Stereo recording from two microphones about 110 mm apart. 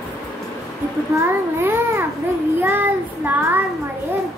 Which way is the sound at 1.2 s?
20° right (ahead or behind).